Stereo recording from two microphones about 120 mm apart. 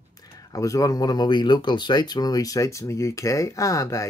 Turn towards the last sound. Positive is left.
turn(degrees=25)  # may be behind; listen again after turning